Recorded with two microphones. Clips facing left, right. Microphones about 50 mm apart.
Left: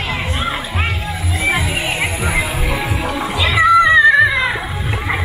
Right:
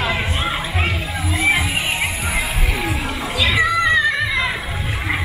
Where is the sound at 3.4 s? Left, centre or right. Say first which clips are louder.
Left 6 dB; centre.